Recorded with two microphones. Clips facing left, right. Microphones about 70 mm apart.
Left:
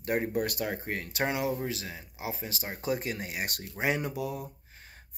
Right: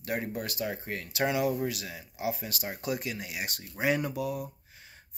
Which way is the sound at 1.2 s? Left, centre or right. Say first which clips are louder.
Right 3 dB; left.